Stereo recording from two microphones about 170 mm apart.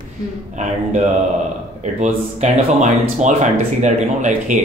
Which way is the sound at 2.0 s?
45° right (ahead or behind).